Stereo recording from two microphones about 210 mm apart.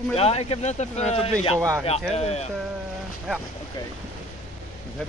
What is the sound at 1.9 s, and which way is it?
Speech, 30° left (ahead or behind).